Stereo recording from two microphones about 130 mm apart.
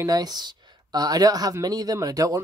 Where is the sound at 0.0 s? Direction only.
30° right (ahead or behind).